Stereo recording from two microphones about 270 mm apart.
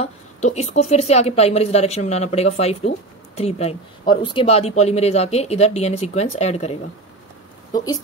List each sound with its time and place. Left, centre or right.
0.0 s speech: left